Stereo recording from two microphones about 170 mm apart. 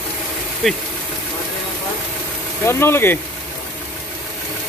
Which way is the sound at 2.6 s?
15° left (ahead or behind).